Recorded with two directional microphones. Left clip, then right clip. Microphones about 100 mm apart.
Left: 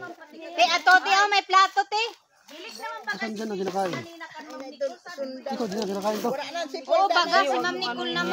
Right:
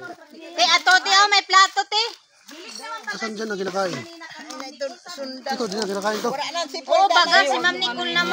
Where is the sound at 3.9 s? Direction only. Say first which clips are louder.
Right 2 dB; 20° left (ahead or behind).